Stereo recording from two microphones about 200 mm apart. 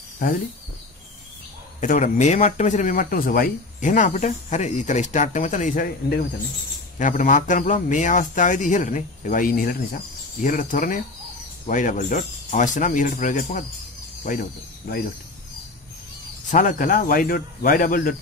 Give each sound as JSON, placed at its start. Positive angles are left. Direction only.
{"t": 0.2, "sound": "speech", "side_deg": 45}
{"t": 1.8, "sound": "speech", "side_deg": 35}
{"t": 7.0, "sound": "speech", "side_deg": 40}
{"t": 16.4, "sound": "speech", "side_deg": 40}